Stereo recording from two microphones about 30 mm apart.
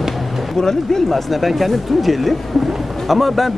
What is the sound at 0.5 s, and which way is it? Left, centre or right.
Speech, centre.